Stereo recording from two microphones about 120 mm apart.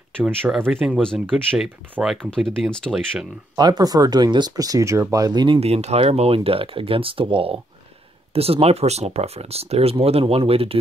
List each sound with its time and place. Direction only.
0.7 s speech: centre (ahead or behind)
3.5 s speech: 35° right (ahead or behind)
5.6 s speech: 60° right (ahead or behind)